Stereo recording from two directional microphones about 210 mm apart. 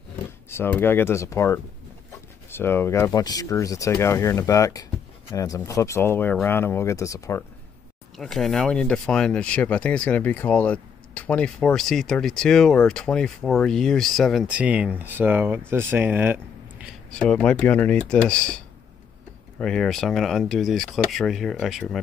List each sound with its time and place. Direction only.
0.5 s speech: 10° left (ahead or behind)
8.2 s speech: centre (ahead or behind)
17.1 s speech: 5° left (ahead or behind)
19.6 s speech: centre (ahead or behind)